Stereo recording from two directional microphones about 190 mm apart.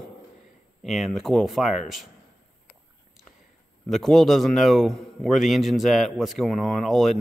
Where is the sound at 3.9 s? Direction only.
Centre (ahead or behind).